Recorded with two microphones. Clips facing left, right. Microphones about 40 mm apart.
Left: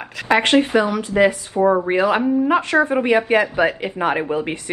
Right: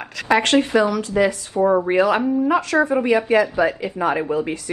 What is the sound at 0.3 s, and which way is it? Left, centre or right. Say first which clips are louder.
Speech: left 1 dB; left.